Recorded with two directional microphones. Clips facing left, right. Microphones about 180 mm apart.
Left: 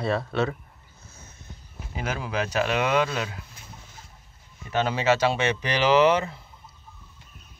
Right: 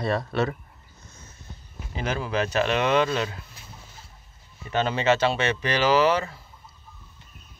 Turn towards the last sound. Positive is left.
turn(degrees=20)  # may be behind; listen again after turning